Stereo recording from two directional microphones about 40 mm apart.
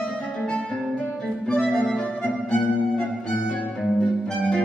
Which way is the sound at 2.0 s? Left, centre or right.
Left.